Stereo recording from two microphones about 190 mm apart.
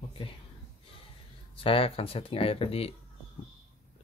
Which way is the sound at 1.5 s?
30° left (ahead or behind).